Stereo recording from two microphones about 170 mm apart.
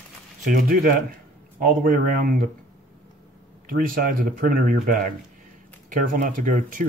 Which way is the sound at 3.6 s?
55° right (ahead or behind).